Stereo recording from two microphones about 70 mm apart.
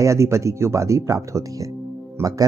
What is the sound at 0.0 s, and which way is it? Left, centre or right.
Speech, right.